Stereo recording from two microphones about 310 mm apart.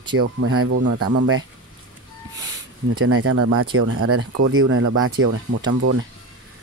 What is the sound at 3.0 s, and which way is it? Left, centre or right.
Speech, right.